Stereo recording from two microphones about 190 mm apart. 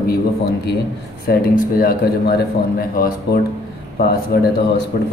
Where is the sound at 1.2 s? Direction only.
50° left (ahead or behind).